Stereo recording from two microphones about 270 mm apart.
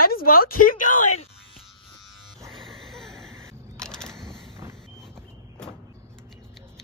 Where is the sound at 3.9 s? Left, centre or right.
Centre.